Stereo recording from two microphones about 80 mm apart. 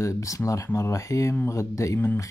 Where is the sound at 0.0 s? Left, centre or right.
Left.